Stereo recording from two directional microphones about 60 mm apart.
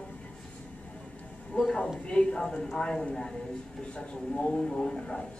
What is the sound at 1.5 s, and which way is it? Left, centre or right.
Speech, left.